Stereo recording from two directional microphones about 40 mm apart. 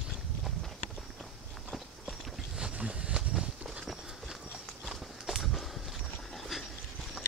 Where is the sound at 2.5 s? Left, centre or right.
Right.